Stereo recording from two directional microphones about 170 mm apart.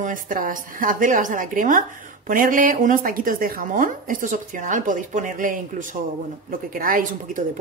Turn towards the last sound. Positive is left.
turn(degrees=-55)  # may be behind; listen again after turning